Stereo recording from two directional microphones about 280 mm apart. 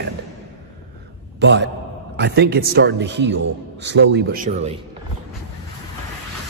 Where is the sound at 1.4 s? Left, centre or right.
Right.